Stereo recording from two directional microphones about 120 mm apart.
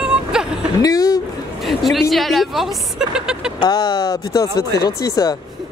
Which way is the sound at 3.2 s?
5° right (ahead or behind).